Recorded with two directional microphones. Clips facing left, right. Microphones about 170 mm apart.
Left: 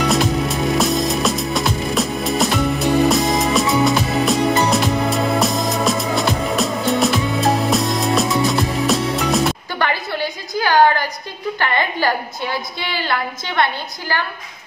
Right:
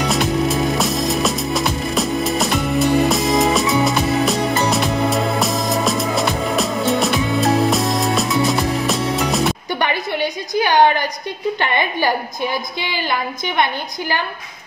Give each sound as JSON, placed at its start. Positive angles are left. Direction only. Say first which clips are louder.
{"t": 0.1, "sound": "music", "louder": "even", "side_deg": 0}
{"t": 9.8, "sound": "a sound", "louder": "even", "side_deg": -20}
{"t": 12.8, "sound": "a woman's voice", "louder": "left 2 dB", "side_deg": -15}